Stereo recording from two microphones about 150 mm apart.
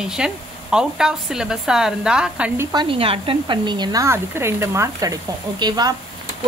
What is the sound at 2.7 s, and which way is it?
Speech, 35° right (ahead or behind).